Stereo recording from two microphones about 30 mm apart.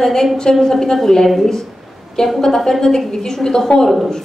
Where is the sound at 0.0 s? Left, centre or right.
Centre.